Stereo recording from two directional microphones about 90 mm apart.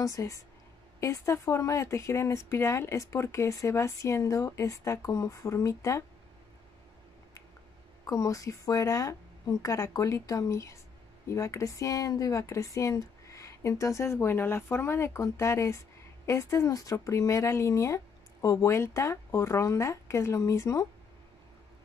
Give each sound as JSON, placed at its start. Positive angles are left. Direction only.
{"t": 0.0, "sound": "speech", "side_deg": 35}
{"t": 8.1, "sound": "speech", "side_deg": 40}